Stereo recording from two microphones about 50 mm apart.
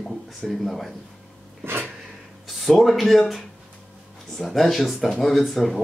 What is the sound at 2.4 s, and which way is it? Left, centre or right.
Speech, centre.